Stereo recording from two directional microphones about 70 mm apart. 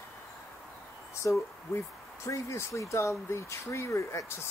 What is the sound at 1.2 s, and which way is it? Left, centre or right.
Speech, left.